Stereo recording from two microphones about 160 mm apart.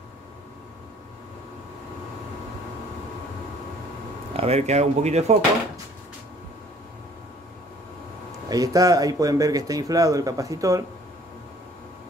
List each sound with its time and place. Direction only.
4.4 s speech: 40° right (ahead or behind)
8.5 s speech: 25° right (ahead or behind)